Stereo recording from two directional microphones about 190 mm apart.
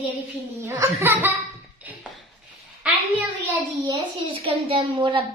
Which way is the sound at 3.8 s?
25° right (ahead or behind).